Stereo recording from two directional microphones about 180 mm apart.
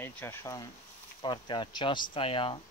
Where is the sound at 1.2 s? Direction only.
25° left (ahead or behind).